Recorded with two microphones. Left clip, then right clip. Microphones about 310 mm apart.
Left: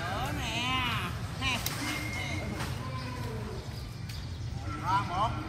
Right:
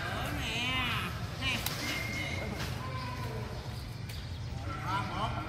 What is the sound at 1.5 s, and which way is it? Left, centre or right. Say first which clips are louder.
Vehicle: left 2 dB; centre.